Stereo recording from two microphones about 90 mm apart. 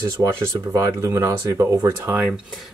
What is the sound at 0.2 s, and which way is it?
Speech, 30° right (ahead or behind).